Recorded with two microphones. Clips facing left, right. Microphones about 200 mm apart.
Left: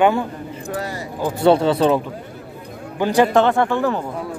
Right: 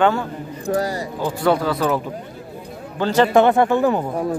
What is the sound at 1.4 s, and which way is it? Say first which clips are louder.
Speech: left 5 dB; 25° left (ahead or behind).